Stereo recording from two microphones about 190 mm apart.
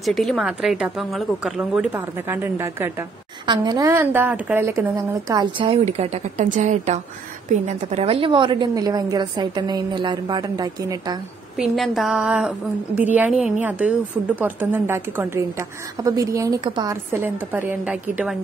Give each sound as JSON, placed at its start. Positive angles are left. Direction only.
{"t": 0.0, "sound": "a woman's voice", "side_deg": 0}
{"t": 11.5, "sound": "a woman's voice", "side_deg": 0}